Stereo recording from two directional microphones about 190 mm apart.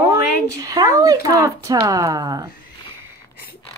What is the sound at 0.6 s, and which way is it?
Speech, 20° right (ahead or behind).